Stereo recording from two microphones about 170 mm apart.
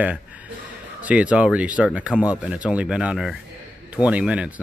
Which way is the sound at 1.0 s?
10° right (ahead or behind).